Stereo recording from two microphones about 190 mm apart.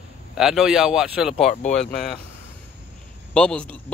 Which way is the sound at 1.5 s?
40° left (ahead or behind).